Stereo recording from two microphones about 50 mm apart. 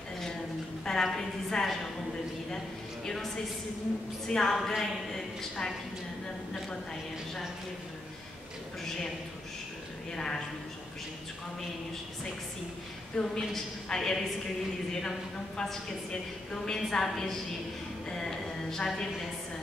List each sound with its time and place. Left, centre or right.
0.8 s a woman's voice: centre
4.3 s a woman's voice: centre
10.1 s a woman's voice: centre
13.1 s a woman's voice: centre